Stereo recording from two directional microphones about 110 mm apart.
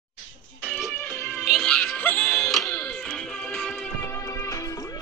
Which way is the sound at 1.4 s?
Centre (ahead or behind).